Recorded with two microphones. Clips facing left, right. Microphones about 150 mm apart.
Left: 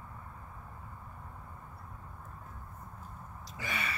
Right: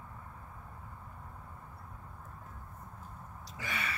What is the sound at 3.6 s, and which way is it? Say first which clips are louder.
Gasp: left 1 dB; 20° left (ahead or behind).